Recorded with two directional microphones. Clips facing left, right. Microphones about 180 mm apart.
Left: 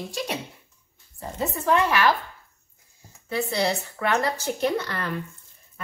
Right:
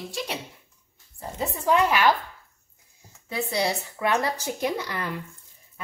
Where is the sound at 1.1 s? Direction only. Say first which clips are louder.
Left 2 dB; 15° right (ahead or behind).